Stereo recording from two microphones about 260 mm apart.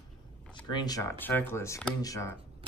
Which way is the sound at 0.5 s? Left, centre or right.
Centre.